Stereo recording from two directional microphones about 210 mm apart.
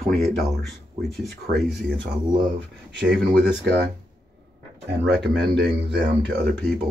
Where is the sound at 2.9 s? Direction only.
55° right (ahead or behind).